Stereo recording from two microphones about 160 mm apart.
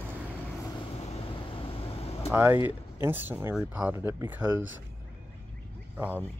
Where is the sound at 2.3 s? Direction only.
10° right (ahead or behind).